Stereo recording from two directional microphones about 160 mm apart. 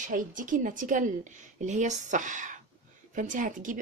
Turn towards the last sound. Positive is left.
turn(degrees=-55)  # may be behind; listen again after turning